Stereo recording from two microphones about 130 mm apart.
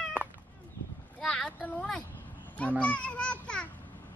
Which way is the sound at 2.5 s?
10° left (ahead or behind).